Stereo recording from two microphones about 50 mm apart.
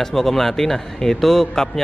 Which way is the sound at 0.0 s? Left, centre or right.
Centre.